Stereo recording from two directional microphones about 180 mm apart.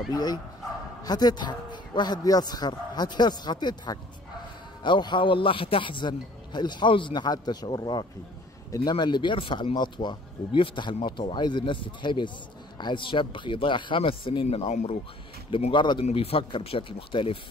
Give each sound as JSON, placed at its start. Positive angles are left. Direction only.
{"t": 0.1, "sound": "speech", "side_deg": 20}